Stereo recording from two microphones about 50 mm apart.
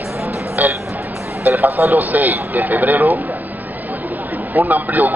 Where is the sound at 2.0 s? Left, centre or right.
Right.